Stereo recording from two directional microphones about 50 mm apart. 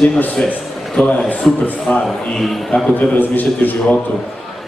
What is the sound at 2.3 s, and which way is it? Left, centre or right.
Speech, centre.